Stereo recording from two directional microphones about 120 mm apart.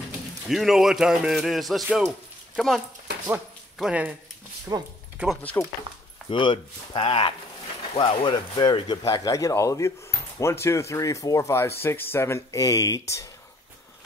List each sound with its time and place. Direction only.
0.5 s speech: centre (ahead or behind)
3.8 s speech: 10° right (ahead or behind)
4.7 s speech: 30° right (ahead or behind)
5.4 s speech: 15° left (ahead or behind)
6.3 s speech: 45° left (ahead or behind)
9.0 s speech: 25° left (ahead or behind)